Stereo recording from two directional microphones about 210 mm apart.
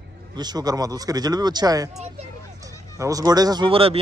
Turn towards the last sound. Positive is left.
turn(degrees=-25)  # may be behind; listen again after turning